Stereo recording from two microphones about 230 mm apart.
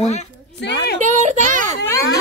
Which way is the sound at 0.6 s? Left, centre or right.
Left.